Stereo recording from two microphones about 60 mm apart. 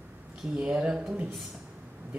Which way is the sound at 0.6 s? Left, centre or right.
Centre.